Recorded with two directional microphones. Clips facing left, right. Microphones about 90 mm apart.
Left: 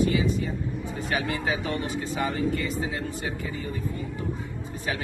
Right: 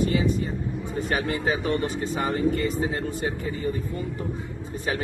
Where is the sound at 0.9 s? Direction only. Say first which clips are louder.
Right 3 dB; 45° right (ahead or behind).